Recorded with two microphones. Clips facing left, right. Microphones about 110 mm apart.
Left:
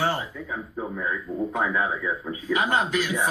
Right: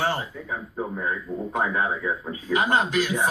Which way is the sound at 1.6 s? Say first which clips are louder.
Right 2 dB; 40° right (ahead or behind).